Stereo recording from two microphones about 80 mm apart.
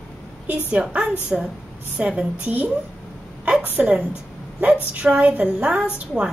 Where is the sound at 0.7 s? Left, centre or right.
Centre.